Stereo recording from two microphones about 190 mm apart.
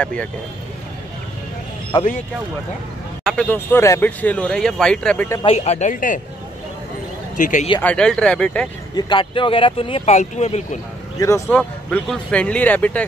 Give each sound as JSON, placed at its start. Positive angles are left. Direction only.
{"t": 0.0, "sound": "speech", "side_deg": 5}
{"t": 1.9, "sound": "speech", "side_deg": 25}
{"t": 3.3, "sound": "speech", "side_deg": 5}
{"t": 5.4, "sound": "a woman's voice", "side_deg": 35}
{"t": 7.3, "sound": "speech", "side_deg": 40}
{"t": 7.8, "sound": "speech", "side_deg": 5}
{"t": 8.9, "sound": "speech", "side_deg": 25}
{"t": 11.1, "sound": "speech", "side_deg": 15}
{"t": 11.4, "sound": "speech", "side_deg": 5}